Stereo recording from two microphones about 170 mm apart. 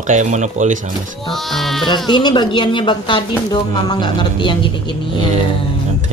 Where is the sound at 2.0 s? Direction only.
25° left (ahead or behind).